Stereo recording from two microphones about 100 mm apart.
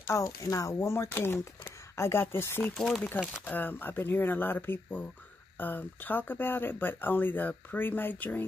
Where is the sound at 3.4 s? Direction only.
20° left (ahead or behind).